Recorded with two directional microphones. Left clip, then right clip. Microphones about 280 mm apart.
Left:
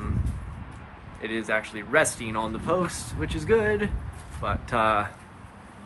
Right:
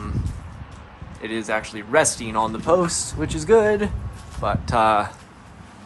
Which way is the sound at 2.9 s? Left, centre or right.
Right.